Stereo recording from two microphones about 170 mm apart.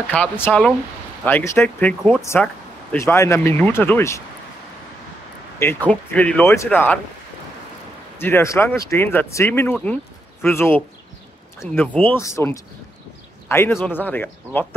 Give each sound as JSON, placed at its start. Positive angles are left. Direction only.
{"t": 0.1, "sound": "speech", "side_deg": 10}
{"t": 5.6, "sound": "speech", "side_deg": 10}
{"t": 8.2, "sound": "speech", "side_deg": 15}